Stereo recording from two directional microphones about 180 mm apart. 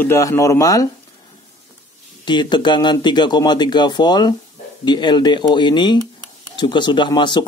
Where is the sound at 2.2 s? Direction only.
25° left (ahead or behind).